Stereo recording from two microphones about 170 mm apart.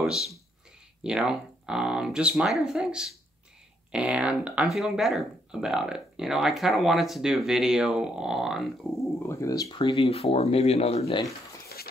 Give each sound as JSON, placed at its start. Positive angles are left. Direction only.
{"t": 0.0, "sound": "speech", "side_deg": 0}
{"t": 9.2, "sound": "speech", "side_deg": 15}
{"t": 9.8, "sound": "speech", "side_deg": 35}